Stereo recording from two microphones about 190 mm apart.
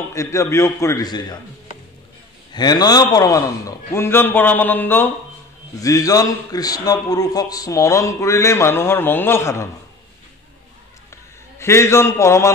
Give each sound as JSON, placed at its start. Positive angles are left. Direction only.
{"t": 0.1, "sound": "a man's voice", "side_deg": 15}
{"t": 2.5, "sound": "a man's voice", "side_deg": 20}
{"t": 11.6, "sound": "a man's voice", "side_deg": 15}